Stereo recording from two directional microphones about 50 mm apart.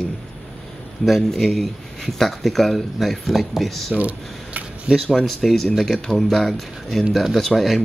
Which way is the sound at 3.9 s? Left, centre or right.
Right.